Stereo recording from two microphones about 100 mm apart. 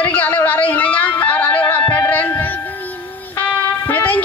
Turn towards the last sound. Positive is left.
turn(degrees=15)  # may be behind; listen again after turning